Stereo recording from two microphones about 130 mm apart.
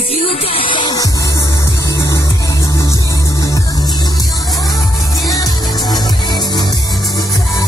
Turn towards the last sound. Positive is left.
turn(degrees=30)  # may be behind; listen again after turning